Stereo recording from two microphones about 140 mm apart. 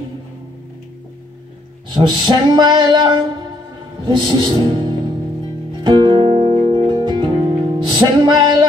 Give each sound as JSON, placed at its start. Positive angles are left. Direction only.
{"t": 2.0, "sound": "music", "side_deg": -30}
{"t": 6.8, "sound": "music", "side_deg": -30}